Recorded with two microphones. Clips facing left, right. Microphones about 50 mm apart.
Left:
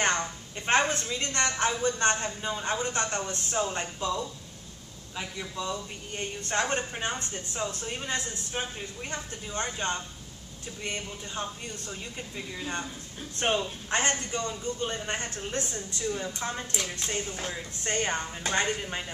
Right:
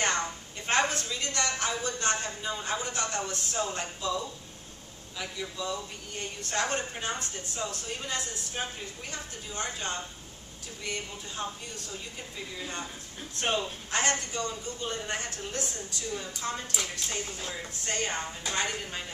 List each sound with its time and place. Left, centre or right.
0.7 s a woman's voice: left
3.3 s a woman's voice: left
5.7 s a woman's voice: left
13.4 s a woman's voice: left